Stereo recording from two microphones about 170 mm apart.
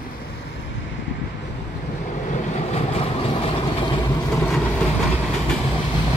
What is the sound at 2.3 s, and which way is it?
Vehicle, 40° left (ahead or behind).